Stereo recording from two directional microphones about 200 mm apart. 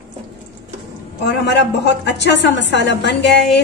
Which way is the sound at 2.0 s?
60° left (ahead or behind).